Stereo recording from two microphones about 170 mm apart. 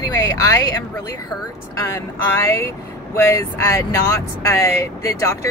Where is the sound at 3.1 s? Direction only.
15° left (ahead or behind).